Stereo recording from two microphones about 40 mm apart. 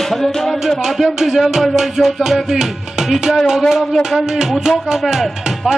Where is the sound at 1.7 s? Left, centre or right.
Centre.